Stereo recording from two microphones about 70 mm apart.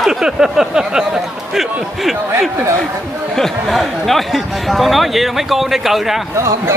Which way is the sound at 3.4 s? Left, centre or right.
Centre.